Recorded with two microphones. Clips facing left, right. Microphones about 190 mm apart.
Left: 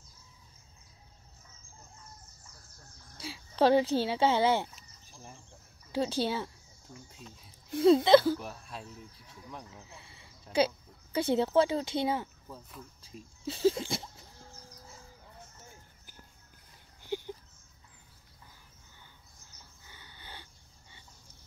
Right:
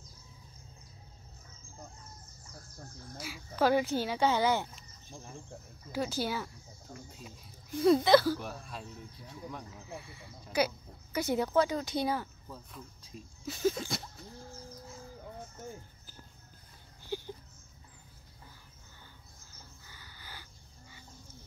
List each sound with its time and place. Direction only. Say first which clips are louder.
3.2 s speech: left 3 dB; 30° left (ahead or behind)
5.9 s a woman's voice: left 3 dB; 30° left (ahead or behind)
7.8 s a woman's voice: left 2 dB; 25° left (ahead or behind)
8.4 s speech: right 1 dB; centre (ahead or behind)
10.5 s a woman's voice: left 3 dB; 25° left (ahead or behind)
12.4 s speech: even; centre (ahead or behind)
13.5 s a woman's voice: left 3 dB; 30° left (ahead or behind)
17.1 s a sound: left 2 dB; 20° left (ahead or behind)
19.9 s a sound: left 2 dB; 25° left (ahead or behind)